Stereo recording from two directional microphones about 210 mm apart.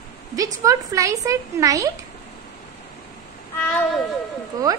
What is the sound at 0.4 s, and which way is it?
A woman's voice, 15° right (ahead or behind).